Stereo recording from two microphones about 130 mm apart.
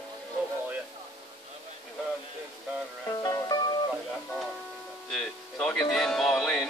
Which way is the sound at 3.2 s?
30° left (ahead or behind).